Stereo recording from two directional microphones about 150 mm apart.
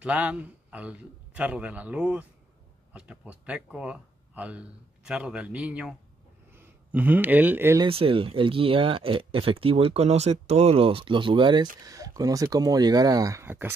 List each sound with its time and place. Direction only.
0.0 s a man's voice: 10° right (ahead or behind)
7.8 s speech: 35° right (ahead or behind); by 13.7 s 15° right (ahead or behind)